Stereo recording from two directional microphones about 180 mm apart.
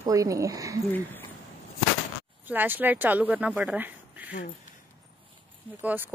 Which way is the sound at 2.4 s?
10° right (ahead or behind).